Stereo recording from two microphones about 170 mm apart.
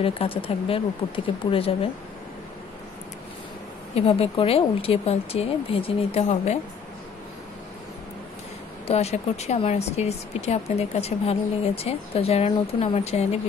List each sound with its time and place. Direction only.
0.0 s speech: 35° left (ahead or behind)
3.9 s speech: 35° left (ahead or behind)
8.8 s speech: 40° left (ahead or behind)